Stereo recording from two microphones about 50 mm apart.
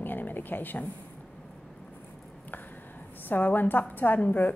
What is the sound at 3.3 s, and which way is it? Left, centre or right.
A woman's voice, left.